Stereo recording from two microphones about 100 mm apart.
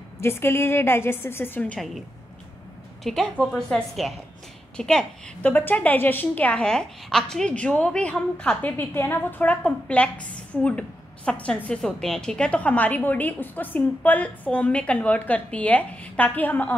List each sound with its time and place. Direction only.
0.2 s a woman's voice: 25° left (ahead or behind)
3.0 s a woman's voice: 5° left (ahead or behind)
5.5 s a woman's voice: 20° left (ahead or behind)